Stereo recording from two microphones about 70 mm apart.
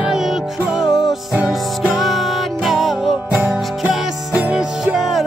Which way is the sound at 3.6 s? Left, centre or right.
Centre.